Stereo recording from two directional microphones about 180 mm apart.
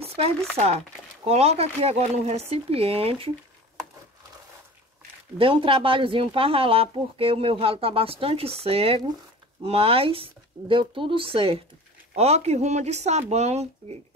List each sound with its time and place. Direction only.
0.0 s chopping: 35° right (ahead or behind)
0.6 s speech: 35° right (ahead or behind)
5.4 s speech: 30° right (ahead or behind)